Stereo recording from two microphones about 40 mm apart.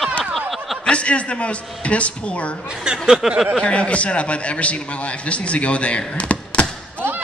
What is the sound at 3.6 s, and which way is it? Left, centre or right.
Speech, left.